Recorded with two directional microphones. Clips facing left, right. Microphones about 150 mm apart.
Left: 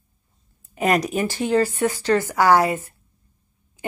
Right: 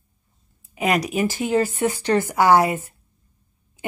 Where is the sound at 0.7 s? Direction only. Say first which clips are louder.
Left 1 dB; 5° right (ahead or behind).